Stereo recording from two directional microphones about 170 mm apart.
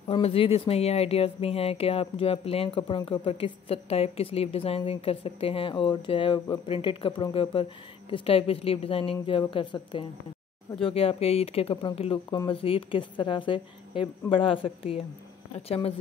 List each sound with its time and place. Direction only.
0.1 s a woman's voice: 35° left (ahead or behind)